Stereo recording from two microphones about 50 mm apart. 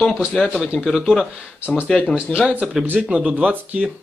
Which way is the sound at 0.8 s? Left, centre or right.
Centre.